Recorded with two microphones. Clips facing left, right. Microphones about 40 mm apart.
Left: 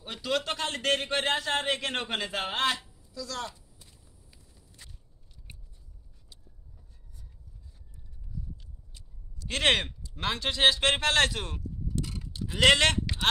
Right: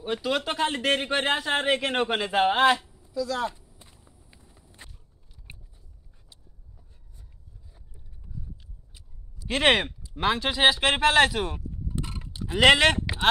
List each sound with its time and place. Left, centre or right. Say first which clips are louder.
0.0 s speech: right 4 dB; centre
3.1 s walk: right 9 dB; centre
5.5 s biting: right 4 dB; right
8.9 s speech: even; centre
11.9 s livestock: right 1 dB; right
12.3 s speech: right 4 dB; centre